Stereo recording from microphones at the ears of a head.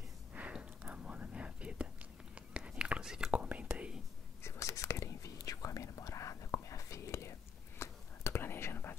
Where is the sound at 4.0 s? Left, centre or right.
Left.